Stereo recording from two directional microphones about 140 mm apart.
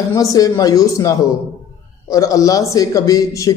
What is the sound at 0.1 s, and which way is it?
A man's voice, 25° left (ahead or behind).